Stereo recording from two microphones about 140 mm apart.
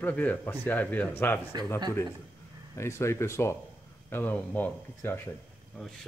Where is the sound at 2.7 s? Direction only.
20° left (ahead or behind).